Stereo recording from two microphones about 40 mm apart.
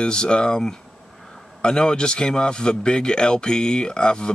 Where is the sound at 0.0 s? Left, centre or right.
Left.